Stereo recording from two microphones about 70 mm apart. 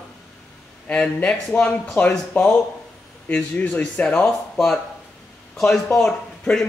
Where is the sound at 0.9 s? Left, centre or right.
Centre.